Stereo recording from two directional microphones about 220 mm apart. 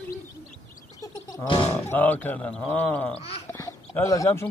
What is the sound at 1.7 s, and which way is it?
Speech, 10° left (ahead or behind).